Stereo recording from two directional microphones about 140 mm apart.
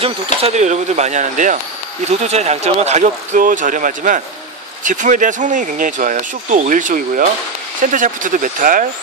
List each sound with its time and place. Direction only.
0.0 s speech: 45° right (ahead or behind); by 1.6 s 65° right (ahead or behind)
2.0 s speech: 50° right (ahead or behind); by 8.8 s 75° right (ahead or behind)